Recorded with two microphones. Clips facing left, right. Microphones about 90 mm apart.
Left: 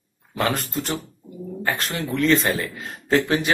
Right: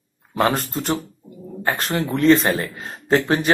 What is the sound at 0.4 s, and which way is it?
Speech, 35° right (ahead or behind).